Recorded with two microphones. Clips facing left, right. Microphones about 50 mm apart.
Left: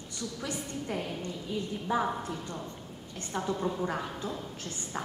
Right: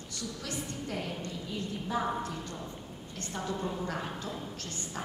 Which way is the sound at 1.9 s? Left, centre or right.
Left.